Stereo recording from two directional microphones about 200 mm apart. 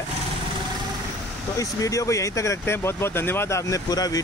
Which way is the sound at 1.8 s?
15° left (ahead or behind).